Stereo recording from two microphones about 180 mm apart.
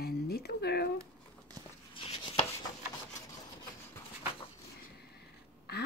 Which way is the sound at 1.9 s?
30° left (ahead or behind).